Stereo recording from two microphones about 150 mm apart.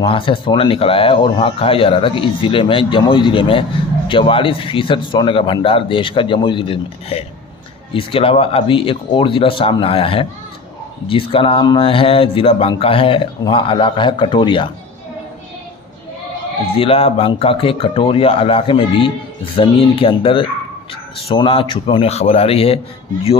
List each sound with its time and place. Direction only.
0.0 s speech: 35° left (ahead or behind)
16.7 s speech: 40° left (ahead or behind)